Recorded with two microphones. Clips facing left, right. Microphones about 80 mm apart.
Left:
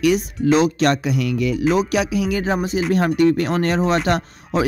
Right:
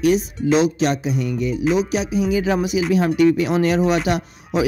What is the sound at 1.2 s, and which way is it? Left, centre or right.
Speech, left.